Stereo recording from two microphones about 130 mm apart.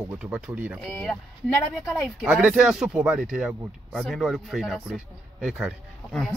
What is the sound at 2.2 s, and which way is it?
Speech, 5° right (ahead or behind).